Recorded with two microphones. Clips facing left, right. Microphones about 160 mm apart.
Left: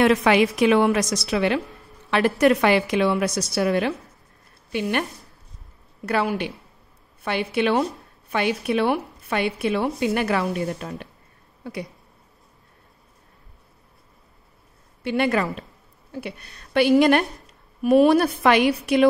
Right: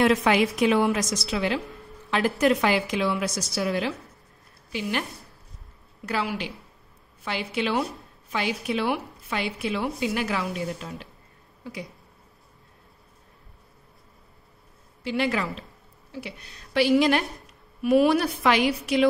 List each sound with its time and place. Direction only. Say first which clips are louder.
0.0 s a woman's voice: left 3 dB; 70° left (ahead or behind)
2.0 s a sound: left 4 dB; 65° left (ahead or behind)
2.4 s a woman's voice: left 4 dB; 60° left (ahead or behind)
6.0 s a woman's voice: left 5 dB; 60° left (ahead or behind)
15.0 s a woman's voice: left 4 dB; 55° left (ahead or behind)